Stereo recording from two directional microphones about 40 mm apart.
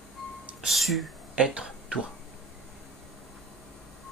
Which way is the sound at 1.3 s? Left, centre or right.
Centre.